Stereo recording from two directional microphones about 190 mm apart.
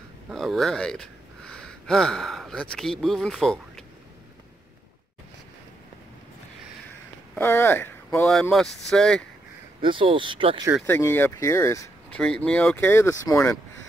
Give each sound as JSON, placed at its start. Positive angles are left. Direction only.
{"t": 0.3, "sound": "speech", "side_deg": 0}
{"t": 7.3, "sound": "speech", "side_deg": 10}
{"t": 8.3, "sound": "speech", "side_deg": 0}
{"t": 9.8, "sound": "speech", "side_deg": -25}
{"t": 10.9, "sound": "speech", "side_deg": 10}
{"t": 12.2, "sound": "speech", "side_deg": 5}